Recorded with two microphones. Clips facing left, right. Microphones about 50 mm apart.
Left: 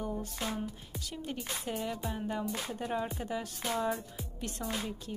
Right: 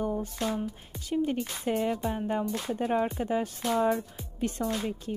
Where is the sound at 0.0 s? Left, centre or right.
Right.